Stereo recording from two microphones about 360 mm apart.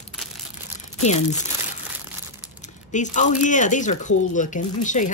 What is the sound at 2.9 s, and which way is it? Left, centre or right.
Speech, centre.